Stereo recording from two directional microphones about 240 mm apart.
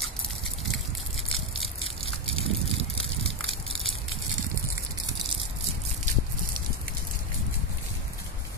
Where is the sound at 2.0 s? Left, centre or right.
Left.